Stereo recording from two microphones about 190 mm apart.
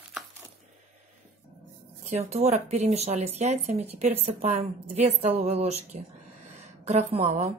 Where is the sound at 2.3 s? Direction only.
35° right (ahead or behind).